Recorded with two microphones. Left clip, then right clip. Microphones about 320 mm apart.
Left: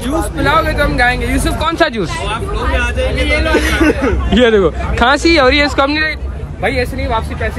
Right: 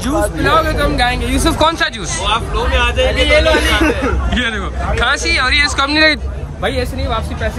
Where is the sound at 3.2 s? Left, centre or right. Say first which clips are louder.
Right 5 dB; right.